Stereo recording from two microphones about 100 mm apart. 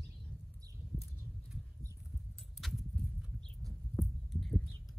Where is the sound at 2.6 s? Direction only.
Centre (ahead or behind).